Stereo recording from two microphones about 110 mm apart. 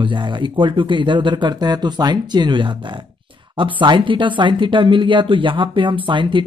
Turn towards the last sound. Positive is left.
turn(degrees=-50)  # may be behind; listen again after turning